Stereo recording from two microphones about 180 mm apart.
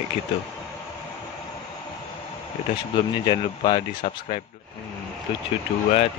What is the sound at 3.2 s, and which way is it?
Speech, 25° left (ahead or behind).